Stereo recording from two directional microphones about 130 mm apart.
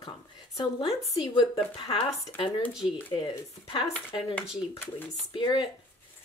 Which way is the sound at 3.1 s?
40° left (ahead or behind).